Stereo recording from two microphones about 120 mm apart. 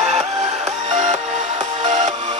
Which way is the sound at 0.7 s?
75° right (ahead or behind).